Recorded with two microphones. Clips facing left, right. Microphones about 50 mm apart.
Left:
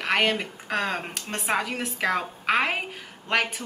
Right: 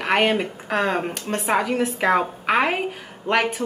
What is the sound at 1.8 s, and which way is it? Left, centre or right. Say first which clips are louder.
Speech: right 6 dB; right.